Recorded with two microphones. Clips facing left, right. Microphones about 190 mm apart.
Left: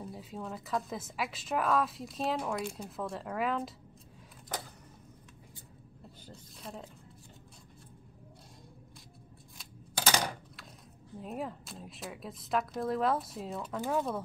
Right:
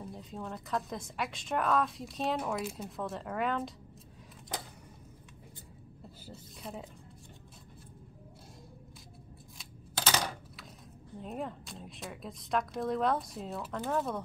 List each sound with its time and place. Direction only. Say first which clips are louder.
0.0 s a woman's voice: even; centre (ahead or behind)
6.2 s a sound: right 2 dB; 5° right (ahead or behind)
9.9 s typing: left 1 dB; 10° left (ahead or behind)
11.1 s a woman's voice: even; 5° left (ahead or behind)